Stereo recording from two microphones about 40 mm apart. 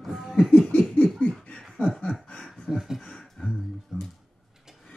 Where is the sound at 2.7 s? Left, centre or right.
Centre.